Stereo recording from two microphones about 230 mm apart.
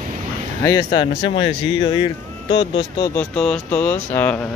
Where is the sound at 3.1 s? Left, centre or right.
Centre.